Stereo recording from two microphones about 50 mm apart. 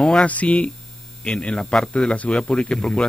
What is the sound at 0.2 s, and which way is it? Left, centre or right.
Speech, left.